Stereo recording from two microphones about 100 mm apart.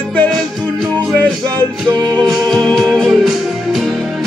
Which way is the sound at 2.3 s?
5° left (ahead or behind).